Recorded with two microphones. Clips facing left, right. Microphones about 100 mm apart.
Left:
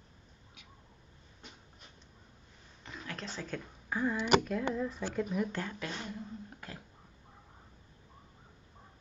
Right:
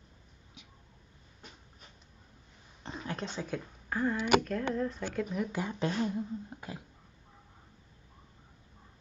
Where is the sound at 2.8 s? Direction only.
30° right (ahead or behind).